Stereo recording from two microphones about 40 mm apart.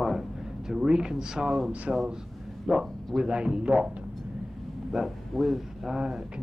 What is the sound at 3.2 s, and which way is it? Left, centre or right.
Speech, right.